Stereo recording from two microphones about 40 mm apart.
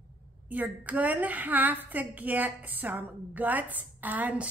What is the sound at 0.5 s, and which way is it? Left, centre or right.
A woman's voice, right.